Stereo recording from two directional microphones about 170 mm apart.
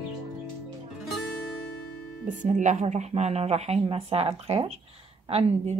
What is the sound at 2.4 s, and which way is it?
Speech, 45° right (ahead or behind).